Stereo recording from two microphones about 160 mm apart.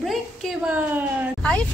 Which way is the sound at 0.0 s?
Centre (ahead or behind).